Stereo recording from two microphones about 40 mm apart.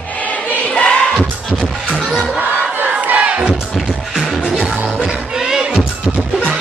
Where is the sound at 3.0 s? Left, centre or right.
Right.